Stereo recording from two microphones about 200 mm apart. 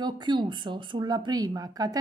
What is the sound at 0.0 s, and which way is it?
Speech, 20° right (ahead or behind).